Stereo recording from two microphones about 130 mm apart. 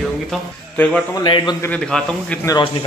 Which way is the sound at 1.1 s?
35° left (ahead or behind).